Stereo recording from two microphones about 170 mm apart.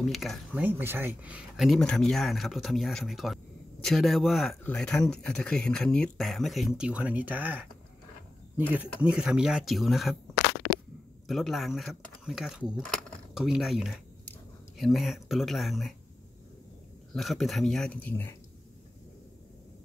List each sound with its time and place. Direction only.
0.0 s speech: centre (ahead or behind)
0.7 s speech: 10° right (ahead or behind)
11.2 s speech: centre (ahead or behind)
17.1 s speech: centre (ahead or behind)